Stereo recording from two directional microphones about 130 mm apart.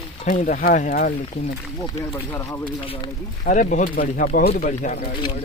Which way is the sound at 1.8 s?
20° left (ahead or behind).